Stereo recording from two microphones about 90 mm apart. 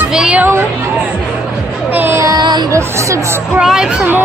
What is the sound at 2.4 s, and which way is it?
Music, 50° right (ahead or behind).